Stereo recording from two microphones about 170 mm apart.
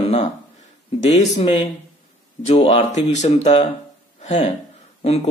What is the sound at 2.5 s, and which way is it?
Speech, 35° left (ahead or behind).